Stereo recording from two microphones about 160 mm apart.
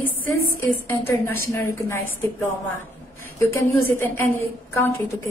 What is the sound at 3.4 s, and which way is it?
A woman's voice, 15° left (ahead or behind).